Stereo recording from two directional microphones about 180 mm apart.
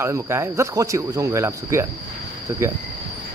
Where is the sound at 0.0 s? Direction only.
15° right (ahead or behind).